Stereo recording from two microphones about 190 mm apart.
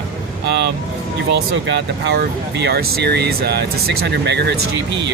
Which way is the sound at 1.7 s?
60° right (ahead or behind).